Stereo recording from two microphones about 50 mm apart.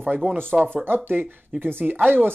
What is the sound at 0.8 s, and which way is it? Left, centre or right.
Speech, right.